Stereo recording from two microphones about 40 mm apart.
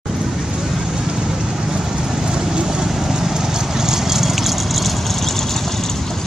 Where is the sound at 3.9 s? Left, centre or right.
Centre.